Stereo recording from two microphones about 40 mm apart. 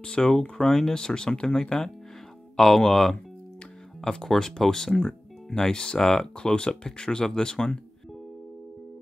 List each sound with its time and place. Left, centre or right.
0.0 s speech: left; by 0.9 s centre
0.9 s speech: centre